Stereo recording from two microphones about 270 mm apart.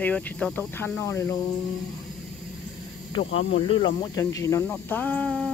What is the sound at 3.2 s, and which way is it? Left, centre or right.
Speech, left.